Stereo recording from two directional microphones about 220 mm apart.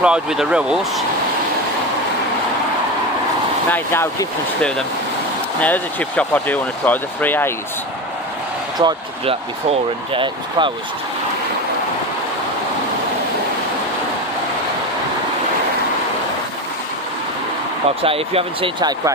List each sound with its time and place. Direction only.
0.0 s speech: 5° right (ahead or behind)
3.7 s speech: 10° left (ahead or behind)
8.7 s speech: 20° right (ahead or behind)
18.0 s speech: 25° right (ahead or behind)